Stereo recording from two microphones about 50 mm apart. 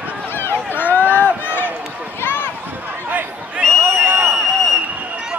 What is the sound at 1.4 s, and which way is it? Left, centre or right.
Run, left.